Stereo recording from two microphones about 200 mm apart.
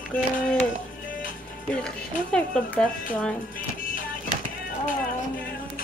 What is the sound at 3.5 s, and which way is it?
Music, 45° left (ahead or behind).